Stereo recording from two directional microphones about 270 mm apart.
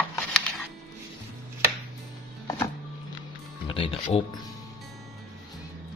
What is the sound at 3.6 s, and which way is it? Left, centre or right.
Music, centre.